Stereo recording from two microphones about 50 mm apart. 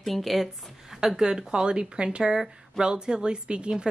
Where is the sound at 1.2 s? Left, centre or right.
Centre.